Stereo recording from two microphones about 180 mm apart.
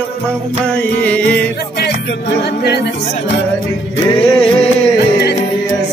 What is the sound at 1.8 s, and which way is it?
Music, 65° left (ahead or behind).